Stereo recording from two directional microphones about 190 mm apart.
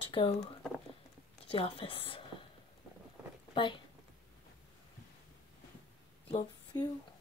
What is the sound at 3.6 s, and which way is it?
Speech, 25° left (ahead or behind).